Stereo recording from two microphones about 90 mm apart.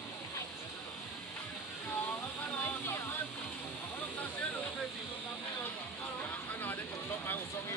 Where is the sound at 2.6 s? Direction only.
25° left (ahead or behind).